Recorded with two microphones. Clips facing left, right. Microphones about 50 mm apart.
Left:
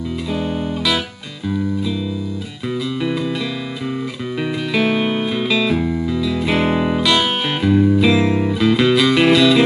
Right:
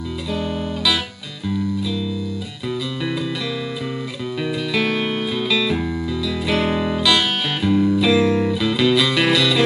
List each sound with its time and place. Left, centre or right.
3.0 s music: centre
4.4 s music: centre